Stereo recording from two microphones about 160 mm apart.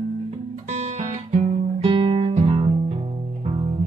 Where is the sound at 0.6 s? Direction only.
45° right (ahead or behind).